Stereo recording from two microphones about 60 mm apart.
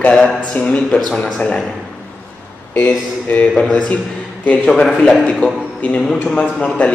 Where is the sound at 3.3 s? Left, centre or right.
Centre.